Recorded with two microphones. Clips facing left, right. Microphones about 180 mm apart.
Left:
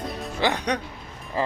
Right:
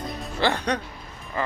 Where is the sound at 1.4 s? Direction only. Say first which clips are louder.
Left 2 dB; 30° left (ahead or behind).